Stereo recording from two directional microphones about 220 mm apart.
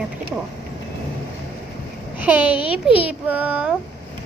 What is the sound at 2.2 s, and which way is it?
A child's voice, 10° right (ahead or behind).